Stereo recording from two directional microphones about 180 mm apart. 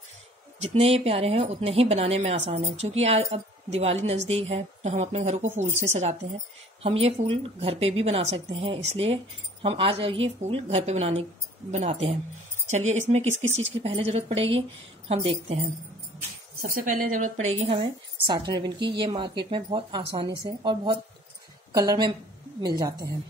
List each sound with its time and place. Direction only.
0.6 s a woman's voice: 35° right (ahead or behind)
16.6 s a woman's voice: 50° right (ahead or behind); by 23.0 s 20° right (ahead or behind)